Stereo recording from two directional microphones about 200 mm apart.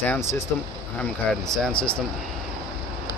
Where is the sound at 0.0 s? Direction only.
10° left (ahead or behind).